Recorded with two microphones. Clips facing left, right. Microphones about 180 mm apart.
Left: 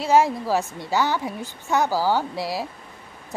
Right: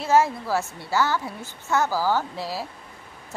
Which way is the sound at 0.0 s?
15° left (ahead or behind).